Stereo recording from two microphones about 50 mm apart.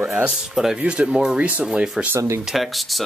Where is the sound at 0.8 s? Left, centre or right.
Right.